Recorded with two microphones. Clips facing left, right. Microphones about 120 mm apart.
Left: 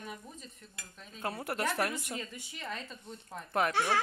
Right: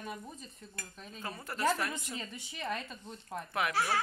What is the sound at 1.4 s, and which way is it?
Speech, 65° left (ahead or behind).